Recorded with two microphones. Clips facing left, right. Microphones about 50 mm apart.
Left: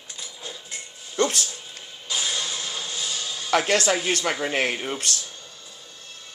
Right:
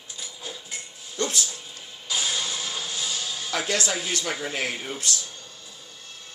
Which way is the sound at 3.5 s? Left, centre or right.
Left.